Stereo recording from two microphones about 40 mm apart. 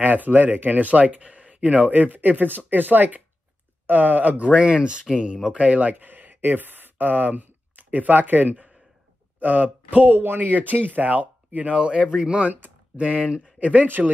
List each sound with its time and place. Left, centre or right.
0.0 s speech: right
4.6 s speech: right
13.2 s speech: right
13.6 s speech: right
13.8 s speech: right